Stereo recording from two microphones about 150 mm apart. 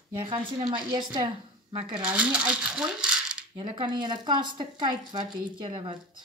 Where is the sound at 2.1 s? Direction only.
10° right (ahead or behind).